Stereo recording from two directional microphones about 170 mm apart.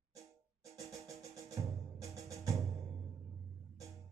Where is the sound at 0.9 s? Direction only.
20° right (ahead or behind).